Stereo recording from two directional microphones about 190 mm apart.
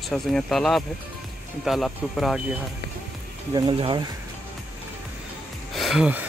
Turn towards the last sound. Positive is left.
turn(degrees=-5)  # may be behind; listen again after turning